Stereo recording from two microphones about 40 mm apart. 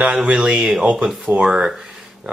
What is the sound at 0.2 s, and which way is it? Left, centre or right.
Speech, right.